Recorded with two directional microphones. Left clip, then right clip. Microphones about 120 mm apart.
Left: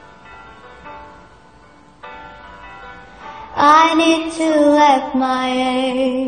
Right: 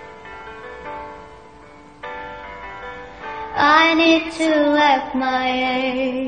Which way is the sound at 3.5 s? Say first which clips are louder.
Left 3 dB; 45° left (ahead or behind).